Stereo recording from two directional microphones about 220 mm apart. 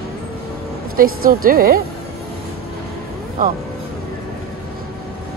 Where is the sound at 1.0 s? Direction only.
40° right (ahead or behind).